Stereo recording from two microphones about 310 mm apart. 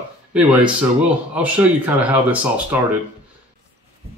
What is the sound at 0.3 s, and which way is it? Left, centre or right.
Speech, centre.